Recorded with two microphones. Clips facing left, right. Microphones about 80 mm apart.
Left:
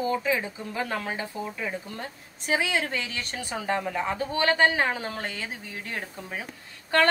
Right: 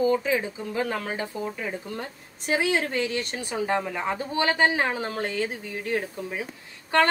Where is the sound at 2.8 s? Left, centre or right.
Right.